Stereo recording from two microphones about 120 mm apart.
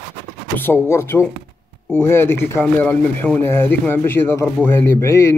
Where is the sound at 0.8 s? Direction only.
20° left (ahead or behind).